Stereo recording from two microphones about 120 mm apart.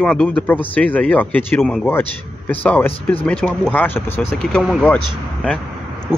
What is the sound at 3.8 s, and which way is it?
Speech, 15° left (ahead or behind).